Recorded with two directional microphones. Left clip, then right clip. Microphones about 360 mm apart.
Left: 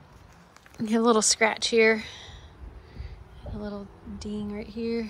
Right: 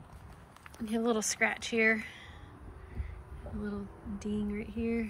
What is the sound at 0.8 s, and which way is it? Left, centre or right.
Speech, left.